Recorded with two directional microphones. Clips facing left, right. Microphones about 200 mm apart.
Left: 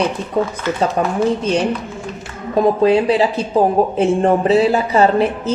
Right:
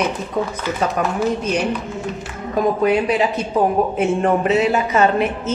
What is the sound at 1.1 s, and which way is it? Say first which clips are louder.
A woman's voice: left 3 dB; 30° left (ahead or behind).